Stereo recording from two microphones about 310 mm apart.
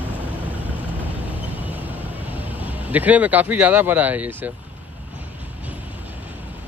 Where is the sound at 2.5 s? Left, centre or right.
Centre.